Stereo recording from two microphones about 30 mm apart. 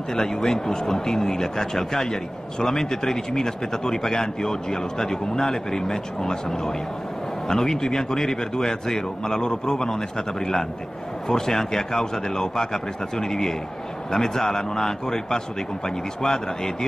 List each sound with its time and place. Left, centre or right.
0.1 s a man's voice: centre